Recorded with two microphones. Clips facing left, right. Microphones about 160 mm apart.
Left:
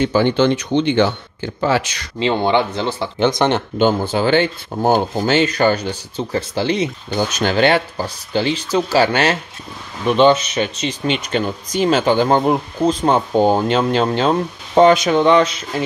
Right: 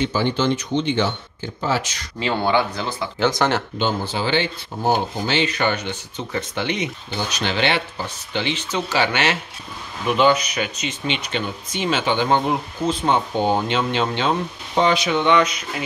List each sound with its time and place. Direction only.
0.0 s speech: 60° left (ahead or behind)
2.1 s speech: 25° left (ahead or behind)
3.7 s speech: 50° left (ahead or behind); by 7.2 s 35° left (ahead or behind)
7.2 s speech: 45° left (ahead or behind)
10.0 s speech: 30° left (ahead or behind)